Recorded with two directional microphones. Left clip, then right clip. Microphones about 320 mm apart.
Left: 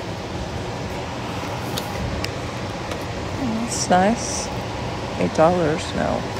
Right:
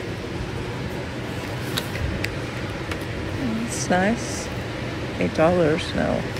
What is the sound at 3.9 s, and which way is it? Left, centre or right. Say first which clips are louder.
Speech: left 5 dB; centre.